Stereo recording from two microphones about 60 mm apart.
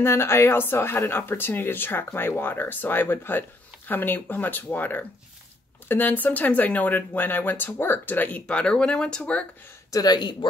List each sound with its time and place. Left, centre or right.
0.0 s speech: left
8.5 s speech: centre
9.9 s speech: left